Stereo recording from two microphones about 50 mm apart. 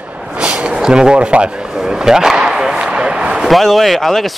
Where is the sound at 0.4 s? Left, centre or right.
Right.